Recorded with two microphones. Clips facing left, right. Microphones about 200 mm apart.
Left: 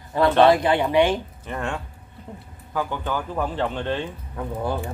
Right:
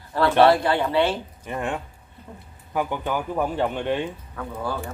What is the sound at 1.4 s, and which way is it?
Speech, 15° right (ahead or behind).